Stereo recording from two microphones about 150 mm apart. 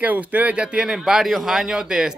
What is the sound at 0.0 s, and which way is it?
Speech, 10° right (ahead or behind).